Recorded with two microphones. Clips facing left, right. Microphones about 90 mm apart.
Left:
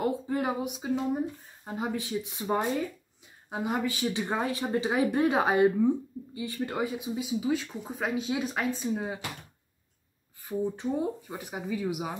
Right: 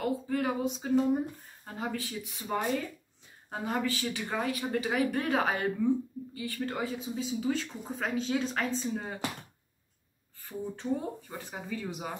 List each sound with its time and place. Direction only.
0.0 s speech: 20° left (ahead or behind); by 1.2 s 5° left (ahead or behind)
1.6 s speech: 20° left (ahead or behind)
3.4 s speech: 10° left (ahead or behind)
10.8 s speech: 15° left (ahead or behind)